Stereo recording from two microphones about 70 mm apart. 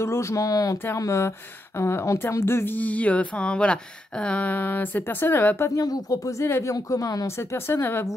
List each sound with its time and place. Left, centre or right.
0.0 s speech: left
5.8 s speech: left
6.4 s speech: left
6.7 s speech: left
7.2 s speech: left